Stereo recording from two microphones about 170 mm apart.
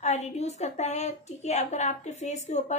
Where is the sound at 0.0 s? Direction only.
40° left (ahead or behind).